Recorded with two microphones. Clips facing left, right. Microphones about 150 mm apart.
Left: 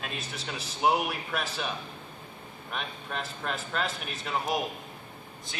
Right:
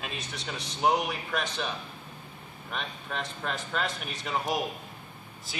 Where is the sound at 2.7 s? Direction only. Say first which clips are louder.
Even; centre (ahead or behind).